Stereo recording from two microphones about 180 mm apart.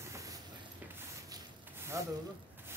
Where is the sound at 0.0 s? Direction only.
15° right (ahead or behind).